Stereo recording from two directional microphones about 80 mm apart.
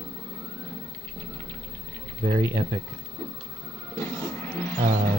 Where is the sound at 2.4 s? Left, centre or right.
Right.